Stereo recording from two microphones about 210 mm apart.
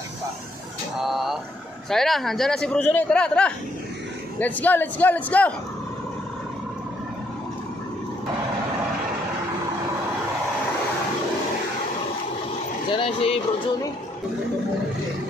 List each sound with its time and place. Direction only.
0.9 s a sound: centre (ahead or behind)
1.9 s a man's voice: centre (ahead or behind)
12.9 s speech: 25° left (ahead or behind)